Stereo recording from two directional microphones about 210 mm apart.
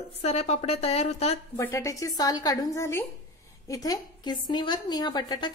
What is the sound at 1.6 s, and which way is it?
A woman's voice, 15° left (ahead or behind).